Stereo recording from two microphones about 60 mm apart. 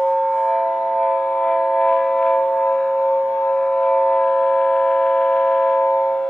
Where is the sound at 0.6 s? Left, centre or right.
Centre.